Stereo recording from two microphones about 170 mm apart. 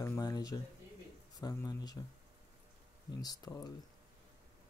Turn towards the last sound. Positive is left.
turn(degrees=20)  # may be behind; listen again after turning